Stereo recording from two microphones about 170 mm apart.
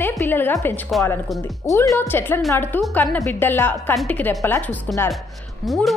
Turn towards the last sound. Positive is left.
turn(degrees=0)  # may be behind; listen again after turning